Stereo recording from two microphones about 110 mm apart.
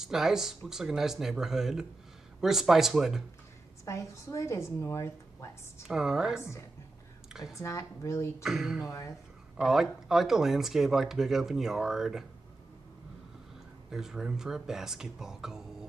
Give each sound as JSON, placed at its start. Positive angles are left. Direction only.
{"t": 0.0, "sound": "speech", "side_deg": -5}
{"t": 3.8, "sound": "a woman's voice", "side_deg": 30}
{"t": 5.9, "sound": "speech", "side_deg": -5}
{"t": 7.5, "sound": "a woman's voice", "side_deg": 30}
{"t": 8.4, "sound": "speech", "side_deg": -5}
{"t": 13.8, "sound": "speech", "side_deg": -5}